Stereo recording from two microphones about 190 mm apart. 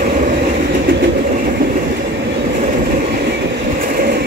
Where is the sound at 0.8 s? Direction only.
50° right (ahead or behind).